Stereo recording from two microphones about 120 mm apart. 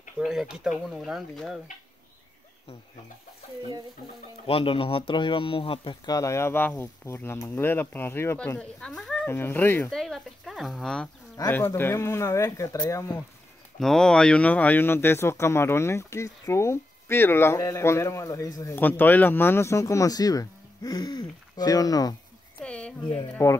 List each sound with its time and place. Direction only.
0.2 s speech: 5° right (ahead or behind)
4.5 s speech: 50° left (ahead or behind)
6.0 s speech: 25° left (ahead or behind)
8.5 s speech: 5° left (ahead or behind)
9.3 s speech: 20° left (ahead or behind)
9.8 s speech: centre (ahead or behind)
11.3 s speech: 20° left (ahead or behind)
13.7 s speech: 5° left (ahead or behind); by 18.8 s 25° left (ahead or behind)
18.8 s speech: 15° left (ahead or behind); by 22.1 s 30° left (ahead or behind)
22.6 s a sound: 10° left (ahead or behind)
23.4 s speech: 25° left (ahead or behind)